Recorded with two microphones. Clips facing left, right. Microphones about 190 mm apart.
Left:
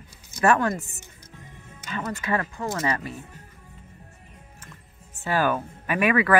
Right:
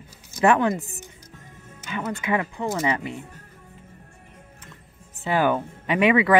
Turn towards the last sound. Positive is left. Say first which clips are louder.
# right 3 dB
turn(degrees=-20)  # may be behind; listen again after turning